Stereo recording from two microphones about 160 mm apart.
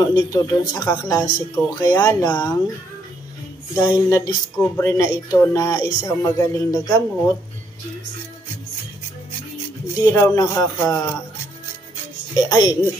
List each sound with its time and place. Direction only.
0.0 s speech: 25° left (ahead or behind)
3.7 s speech: 20° left (ahead or behind)
9.9 s speech: 20° left (ahead or behind)
12.4 s speech: 25° left (ahead or behind)